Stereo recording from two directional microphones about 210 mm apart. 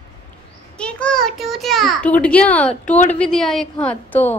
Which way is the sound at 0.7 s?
5° left (ahead or behind).